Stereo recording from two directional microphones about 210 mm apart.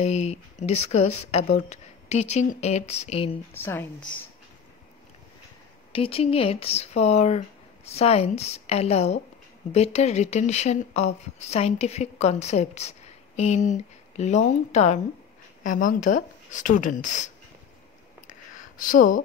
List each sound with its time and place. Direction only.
0.0 s speech: 30° left (ahead or behind)
3.5 s a woman's voice: 10° left (ahead or behind)
5.9 s speech: 25° left (ahead or behind)
18.2 s a sound: 40° left (ahead or behind)